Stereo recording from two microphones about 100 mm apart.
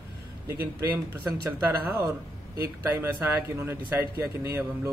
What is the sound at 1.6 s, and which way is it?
Speech, 25° right (ahead or behind).